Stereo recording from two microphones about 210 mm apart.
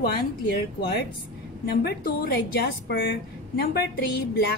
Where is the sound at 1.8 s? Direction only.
50° left (ahead or behind).